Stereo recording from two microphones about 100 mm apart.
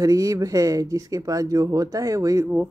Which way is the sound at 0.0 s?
35° right (ahead or behind).